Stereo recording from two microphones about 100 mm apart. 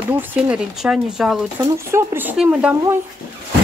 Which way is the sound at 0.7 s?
5° right (ahead or behind).